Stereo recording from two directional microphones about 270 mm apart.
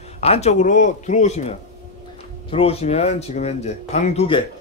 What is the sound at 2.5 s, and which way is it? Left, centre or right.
Speech, left.